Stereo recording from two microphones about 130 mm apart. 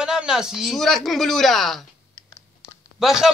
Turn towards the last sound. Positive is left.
turn(degrees=-5)  # may be behind; listen again after turning